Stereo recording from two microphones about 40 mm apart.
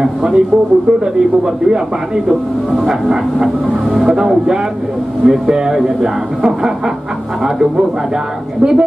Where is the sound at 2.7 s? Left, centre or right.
Centre.